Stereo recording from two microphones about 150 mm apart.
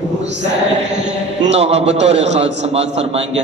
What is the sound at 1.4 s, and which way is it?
A man's voice, 45° right (ahead or behind).